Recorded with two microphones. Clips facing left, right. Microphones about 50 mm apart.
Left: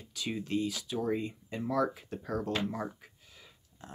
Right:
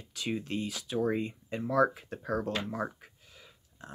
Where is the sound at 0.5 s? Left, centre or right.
Right.